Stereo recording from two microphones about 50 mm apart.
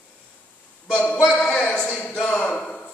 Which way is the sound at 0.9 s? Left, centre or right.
Left.